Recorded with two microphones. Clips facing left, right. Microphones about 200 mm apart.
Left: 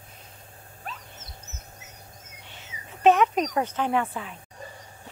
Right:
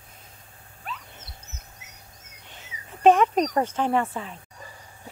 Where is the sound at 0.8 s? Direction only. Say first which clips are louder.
Right 2 dB; 45° left (ahead or behind).